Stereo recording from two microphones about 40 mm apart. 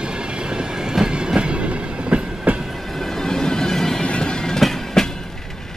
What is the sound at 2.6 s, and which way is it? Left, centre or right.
Train, centre.